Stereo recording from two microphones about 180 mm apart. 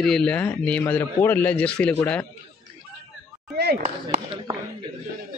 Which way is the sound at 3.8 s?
35° right (ahead or behind).